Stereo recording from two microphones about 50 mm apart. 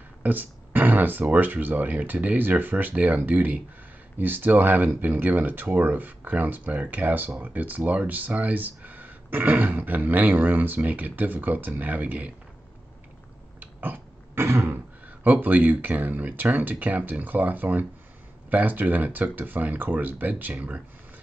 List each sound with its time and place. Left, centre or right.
0.2 s speech: right
13.6 s a sound: right
14.3 s throat clearing: right
15.2 s speech: right